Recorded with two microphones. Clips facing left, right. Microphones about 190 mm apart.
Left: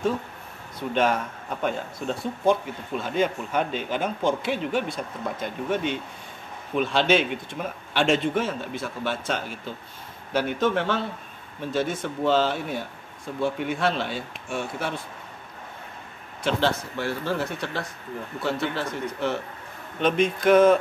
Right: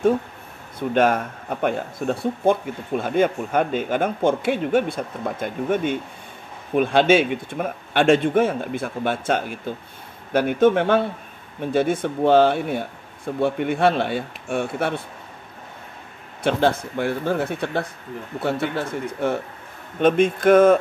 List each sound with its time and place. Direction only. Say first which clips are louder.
0.7 s speech: right 5 dB; 50° right (ahead or behind)
16.4 s speech: right 5 dB; 55° right (ahead or behind)